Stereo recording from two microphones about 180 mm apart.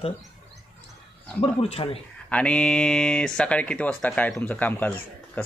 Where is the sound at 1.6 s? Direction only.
35° left (ahead or behind).